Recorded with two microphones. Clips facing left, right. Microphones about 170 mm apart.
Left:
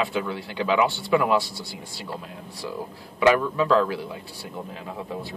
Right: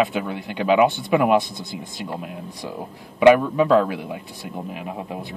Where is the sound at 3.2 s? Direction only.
20° right (ahead or behind).